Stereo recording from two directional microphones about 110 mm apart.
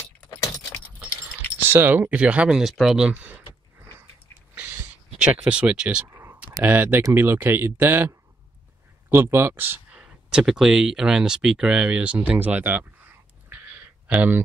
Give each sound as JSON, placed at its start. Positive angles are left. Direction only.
{"t": 1.6, "sound": "speech", "side_deg": -20}
{"t": 5.2, "sound": "speech", "side_deg": -10}
{"t": 6.0, "sound": "a sound", "side_deg": -25}
{"t": 6.6, "sound": "speech", "side_deg": -15}
{"t": 9.1, "sound": "speech", "side_deg": -20}
{"t": 10.3, "sound": "speech", "side_deg": -5}
{"t": 13.5, "sound": "a sound", "side_deg": -15}